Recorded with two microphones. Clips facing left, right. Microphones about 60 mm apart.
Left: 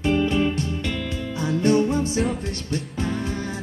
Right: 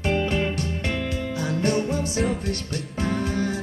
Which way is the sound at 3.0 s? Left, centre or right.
Right.